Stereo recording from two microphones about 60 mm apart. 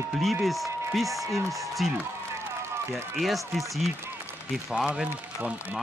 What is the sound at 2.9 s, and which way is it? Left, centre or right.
Speech, centre.